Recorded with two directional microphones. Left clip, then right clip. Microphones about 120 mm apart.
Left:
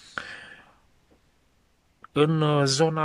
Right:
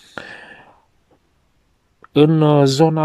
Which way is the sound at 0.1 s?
30° right (ahead or behind).